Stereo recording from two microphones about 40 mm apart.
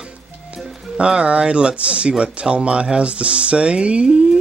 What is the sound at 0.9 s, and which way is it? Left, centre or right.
Speech, right.